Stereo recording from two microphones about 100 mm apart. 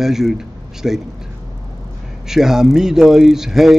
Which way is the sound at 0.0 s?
5° right (ahead or behind).